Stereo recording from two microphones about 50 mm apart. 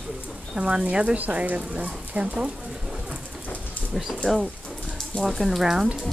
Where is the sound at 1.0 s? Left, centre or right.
Right.